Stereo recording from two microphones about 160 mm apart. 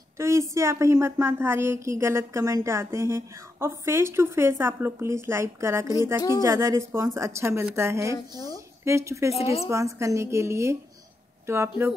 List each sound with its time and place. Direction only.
0.2 s a woman's voice: 20° right (ahead or behind)